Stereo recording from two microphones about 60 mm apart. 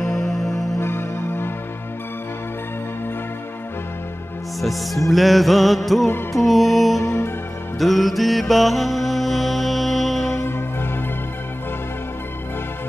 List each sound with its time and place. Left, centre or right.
0.0 s music: centre
0.7 s music: left
4.6 s music: centre
7.8 s mantra: centre
10.3 s music: left